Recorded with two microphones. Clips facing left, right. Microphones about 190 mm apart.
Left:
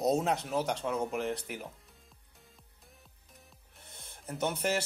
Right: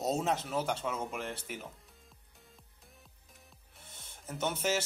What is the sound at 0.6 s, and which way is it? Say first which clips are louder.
Speech: left 3 dB; centre (ahead or behind).